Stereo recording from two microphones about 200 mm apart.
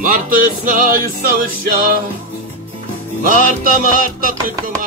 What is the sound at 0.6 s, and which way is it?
Music, 45° right (ahead or behind).